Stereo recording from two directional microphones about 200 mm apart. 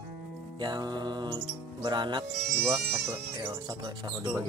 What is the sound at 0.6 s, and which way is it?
Speech, 20° right (ahead or behind).